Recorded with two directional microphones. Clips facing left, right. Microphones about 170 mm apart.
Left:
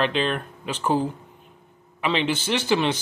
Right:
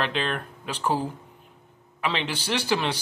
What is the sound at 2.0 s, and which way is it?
Speech, centre (ahead or behind).